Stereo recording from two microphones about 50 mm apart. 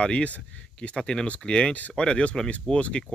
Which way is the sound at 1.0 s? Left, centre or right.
Centre.